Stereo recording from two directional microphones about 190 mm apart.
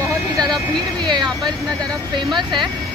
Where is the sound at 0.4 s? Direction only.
20° right (ahead or behind).